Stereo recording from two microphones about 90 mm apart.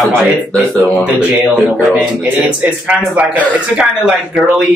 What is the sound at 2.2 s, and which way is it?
A man's voice, 20° right (ahead or behind).